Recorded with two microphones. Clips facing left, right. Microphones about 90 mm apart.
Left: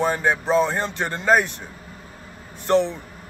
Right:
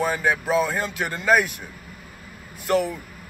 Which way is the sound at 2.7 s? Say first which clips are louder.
Left 3 dB; 25° left (ahead or behind).